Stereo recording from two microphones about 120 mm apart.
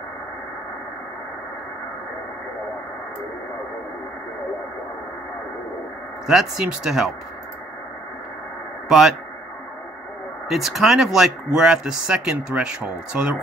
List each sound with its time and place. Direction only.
6.2 s speech: 5° right (ahead or behind)
8.8 s a man's voice: 5° right (ahead or behind)
10.5 s speech: centre (ahead or behind)